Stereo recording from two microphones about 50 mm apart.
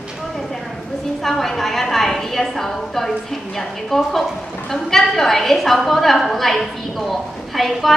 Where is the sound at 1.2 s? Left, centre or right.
Centre.